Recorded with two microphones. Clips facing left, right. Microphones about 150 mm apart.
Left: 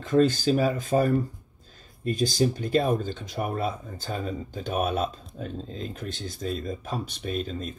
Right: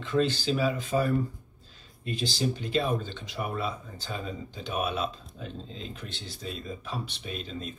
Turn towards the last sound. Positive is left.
turn(degrees=45)  # may be behind; listen again after turning